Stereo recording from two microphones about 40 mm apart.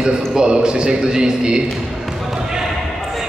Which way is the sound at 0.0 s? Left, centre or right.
Centre.